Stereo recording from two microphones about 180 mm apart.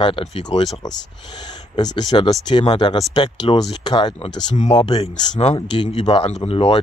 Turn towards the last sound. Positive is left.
turn(degrees=35)  # may be behind; listen again after turning